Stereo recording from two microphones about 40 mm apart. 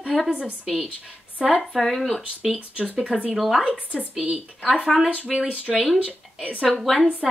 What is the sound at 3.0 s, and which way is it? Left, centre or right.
Speech, right.